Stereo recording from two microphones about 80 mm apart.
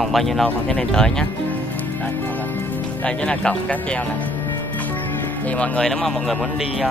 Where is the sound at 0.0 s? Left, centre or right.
Centre.